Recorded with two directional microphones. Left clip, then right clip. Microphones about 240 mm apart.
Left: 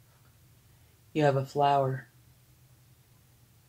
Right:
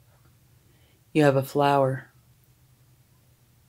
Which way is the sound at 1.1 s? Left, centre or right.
Right.